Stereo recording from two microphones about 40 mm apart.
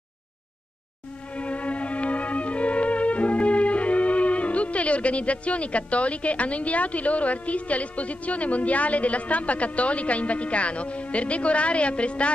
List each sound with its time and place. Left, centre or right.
1.3 s music: left